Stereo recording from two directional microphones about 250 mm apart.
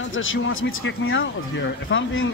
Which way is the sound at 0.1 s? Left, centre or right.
Left.